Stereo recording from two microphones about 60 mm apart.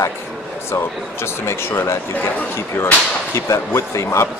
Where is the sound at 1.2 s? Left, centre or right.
Left.